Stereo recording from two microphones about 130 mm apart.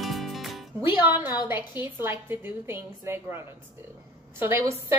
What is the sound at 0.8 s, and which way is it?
Music, 40° left (ahead or behind).